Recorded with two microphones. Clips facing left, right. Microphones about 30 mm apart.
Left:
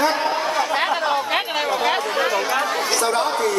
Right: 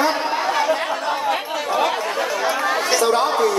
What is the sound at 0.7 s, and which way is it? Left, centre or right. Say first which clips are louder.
Chatter: left 3 dB; left.